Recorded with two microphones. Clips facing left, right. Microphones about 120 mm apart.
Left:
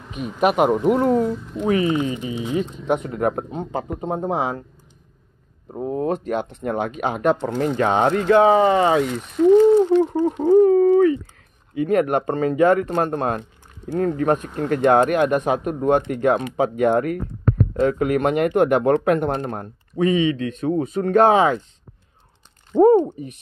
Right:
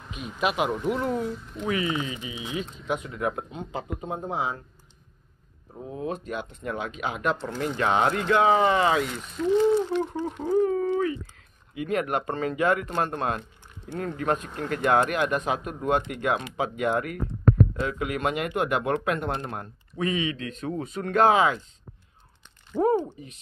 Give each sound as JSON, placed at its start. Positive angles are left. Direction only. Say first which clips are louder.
{"t": 0.2, "sound": "speech", "louder": "left 8 dB", "side_deg": 50}
{"t": 4.3, "sound": "speech", "louder": "left 5 dB", "side_deg": 75}
{"t": 5.7, "sound": "speech", "louder": "left 9 dB", "side_deg": 45}
{"t": 6.7, "sound": "speech", "louder": "left 7 dB", "side_deg": 50}
{"t": 7.7, "sound": "speech", "louder": "left 4 dB", "side_deg": 35}
{"t": 9.4, "sound": "a sound", "louder": "left 9 dB", "side_deg": 50}
{"t": 9.9, "sound": "a sound", "louder": "left 10 dB", "side_deg": 35}
{"t": 11.7, "sound": "speech", "louder": "left 8 dB", "side_deg": 40}
{"t": 20.0, "sound": "speech", "louder": "left 9 dB", "side_deg": 30}
{"t": 20.8, "sound": "speech", "louder": "left 9 dB", "side_deg": 50}
{"t": 21.1, "sound": "speech", "louder": "left 5 dB", "side_deg": 30}
{"t": 22.7, "sound": "speech", "louder": "left 10 dB", "side_deg": 25}